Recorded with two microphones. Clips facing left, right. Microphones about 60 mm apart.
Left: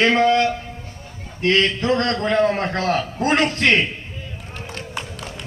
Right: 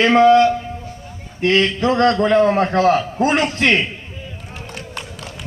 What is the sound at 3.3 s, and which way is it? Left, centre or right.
Speech, left.